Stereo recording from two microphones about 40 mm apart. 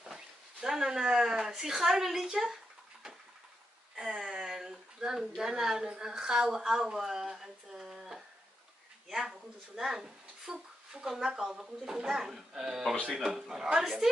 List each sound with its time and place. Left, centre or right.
0.0 s speech: centre
3.9 s speech: centre
4.4 s a sound: centre
5.2 s speech: centre
9.3 s speech: centre
10.5 s a sound: centre
11.1 s speech: centre